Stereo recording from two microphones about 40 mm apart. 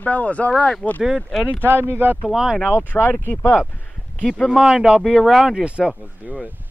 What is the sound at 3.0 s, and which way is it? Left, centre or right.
Speech, left.